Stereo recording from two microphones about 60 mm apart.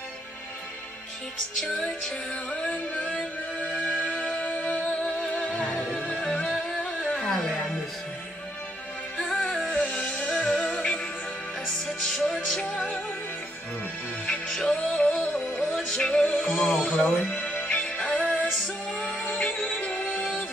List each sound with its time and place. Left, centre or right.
1.6 s music: centre
6.8 s music: centre
9.2 s music: centre
9.8 s music: centre
12.0 s music: centre
14.5 s music: centre
15.7 s music: centre
16.0 s music: centre